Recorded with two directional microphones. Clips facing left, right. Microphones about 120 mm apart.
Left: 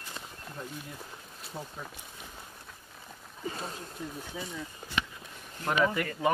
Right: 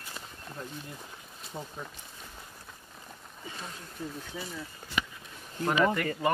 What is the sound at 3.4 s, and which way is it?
Speech, 40° left (ahead or behind).